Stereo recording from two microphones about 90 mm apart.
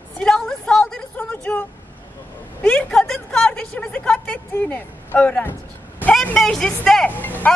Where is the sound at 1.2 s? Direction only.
15° left (ahead or behind).